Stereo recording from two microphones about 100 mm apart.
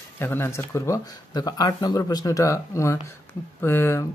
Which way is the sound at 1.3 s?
40° left (ahead or behind).